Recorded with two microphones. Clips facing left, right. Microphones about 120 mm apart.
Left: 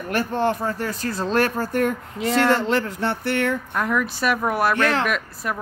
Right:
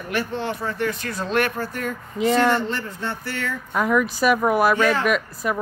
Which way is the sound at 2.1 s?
Centre (ahead or behind).